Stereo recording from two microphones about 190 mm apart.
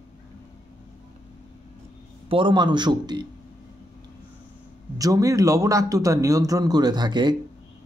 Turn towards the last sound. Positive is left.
turn(degrees=-25)  # may be behind; listen again after turning